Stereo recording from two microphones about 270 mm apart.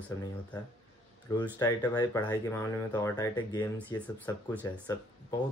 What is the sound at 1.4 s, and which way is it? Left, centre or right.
Speech, centre.